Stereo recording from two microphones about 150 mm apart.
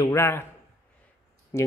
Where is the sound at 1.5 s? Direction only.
15° left (ahead or behind).